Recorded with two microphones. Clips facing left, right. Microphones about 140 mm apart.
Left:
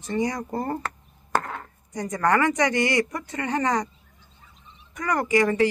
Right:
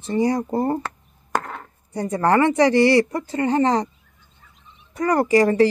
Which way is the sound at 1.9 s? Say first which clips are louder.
Right 4 dB; 30° right (ahead or behind).